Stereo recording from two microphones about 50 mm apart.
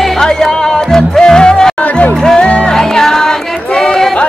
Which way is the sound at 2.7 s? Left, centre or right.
Centre.